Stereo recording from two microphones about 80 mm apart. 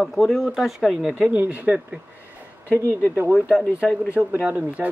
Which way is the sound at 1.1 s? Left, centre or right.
Right.